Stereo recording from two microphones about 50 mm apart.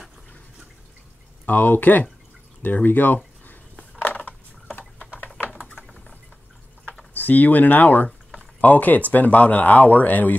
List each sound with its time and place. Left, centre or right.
1.4 s speech: left
4.0 s a sound: left
7.2 s speech: left